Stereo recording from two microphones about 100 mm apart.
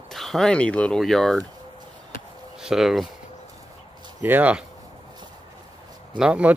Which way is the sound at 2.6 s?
5° right (ahead or behind).